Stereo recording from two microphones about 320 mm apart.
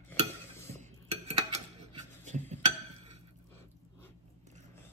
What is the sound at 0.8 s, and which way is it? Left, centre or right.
Dishes, right.